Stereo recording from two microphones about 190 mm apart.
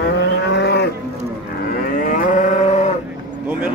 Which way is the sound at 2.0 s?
45° left (ahead or behind).